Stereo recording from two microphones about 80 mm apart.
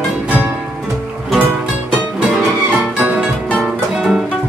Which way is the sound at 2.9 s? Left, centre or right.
Centre.